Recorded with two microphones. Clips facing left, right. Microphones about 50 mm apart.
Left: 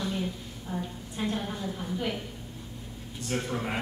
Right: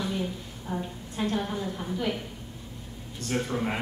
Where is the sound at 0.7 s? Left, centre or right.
Centre.